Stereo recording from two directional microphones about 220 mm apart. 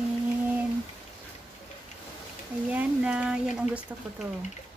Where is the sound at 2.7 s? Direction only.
5° right (ahead or behind).